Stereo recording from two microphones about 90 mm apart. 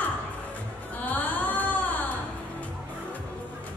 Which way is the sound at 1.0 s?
20° left (ahead or behind).